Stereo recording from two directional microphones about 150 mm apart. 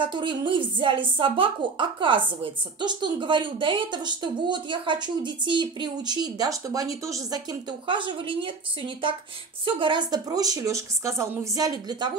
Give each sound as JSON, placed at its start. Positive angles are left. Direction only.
{"t": 0.0, "sound": "speech", "side_deg": -30}